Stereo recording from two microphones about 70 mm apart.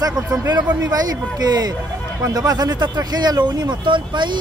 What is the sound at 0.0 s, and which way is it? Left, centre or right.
Speech, right.